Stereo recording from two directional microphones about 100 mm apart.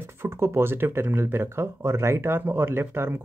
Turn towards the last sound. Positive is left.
turn(degrees=-25)  # may be behind; listen again after turning